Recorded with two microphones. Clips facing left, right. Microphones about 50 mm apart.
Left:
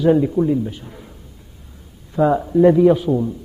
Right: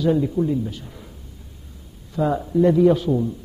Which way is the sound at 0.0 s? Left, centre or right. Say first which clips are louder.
Left 5 dB; left.